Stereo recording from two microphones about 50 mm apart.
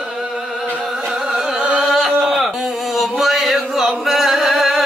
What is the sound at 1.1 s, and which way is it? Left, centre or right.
Carnatic music, centre.